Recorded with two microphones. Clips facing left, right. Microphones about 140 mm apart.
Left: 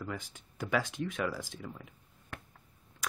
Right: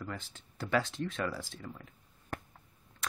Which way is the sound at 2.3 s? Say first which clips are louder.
Right 6 dB; 40° right (ahead or behind).